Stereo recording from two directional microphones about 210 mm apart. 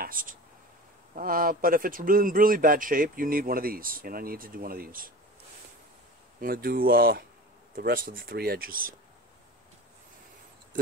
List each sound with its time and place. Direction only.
0.0 s speech: 40° right (ahead or behind)
6.4 s speech: 45° right (ahead or behind)